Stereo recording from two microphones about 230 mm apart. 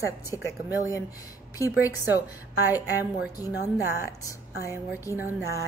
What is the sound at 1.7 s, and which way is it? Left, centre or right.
Speech, centre.